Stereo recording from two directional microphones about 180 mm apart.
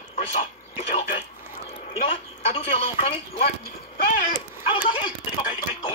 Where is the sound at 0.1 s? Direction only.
35° left (ahead or behind).